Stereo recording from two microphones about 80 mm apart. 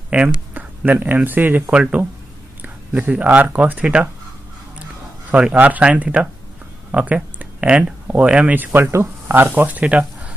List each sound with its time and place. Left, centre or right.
0.1 s speech: centre
5.3 s speech: centre